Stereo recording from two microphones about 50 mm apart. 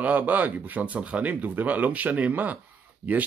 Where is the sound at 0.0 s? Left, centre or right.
Right.